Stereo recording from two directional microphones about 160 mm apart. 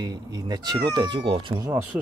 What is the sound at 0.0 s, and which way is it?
Speech, 25° right (ahead or behind).